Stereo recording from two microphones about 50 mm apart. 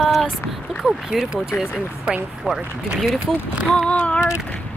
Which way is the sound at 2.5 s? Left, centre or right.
Right.